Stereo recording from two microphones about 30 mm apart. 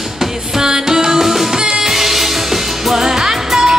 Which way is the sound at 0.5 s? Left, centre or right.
Centre.